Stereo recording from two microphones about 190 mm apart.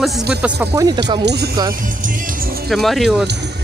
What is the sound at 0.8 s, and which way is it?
Speech, 25° right (ahead or behind).